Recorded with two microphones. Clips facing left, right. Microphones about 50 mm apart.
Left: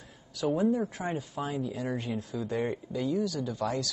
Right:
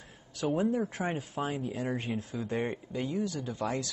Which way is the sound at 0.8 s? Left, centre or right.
Right.